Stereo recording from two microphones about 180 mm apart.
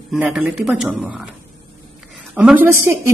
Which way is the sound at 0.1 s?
5° right (ahead or behind).